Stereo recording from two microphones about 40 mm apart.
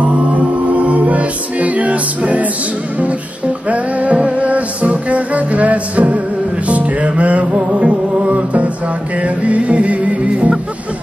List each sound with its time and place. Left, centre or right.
0.0 s music: right
3.6 s music: right